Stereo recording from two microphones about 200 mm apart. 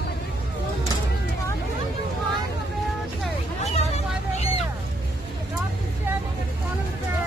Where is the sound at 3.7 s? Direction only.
35° left (ahead or behind).